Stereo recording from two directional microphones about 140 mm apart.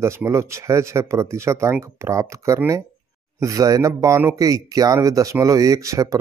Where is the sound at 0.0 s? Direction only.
20° right (ahead or behind).